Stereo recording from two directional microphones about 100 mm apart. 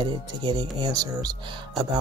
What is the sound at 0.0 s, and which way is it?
Speech, 45° right (ahead or behind).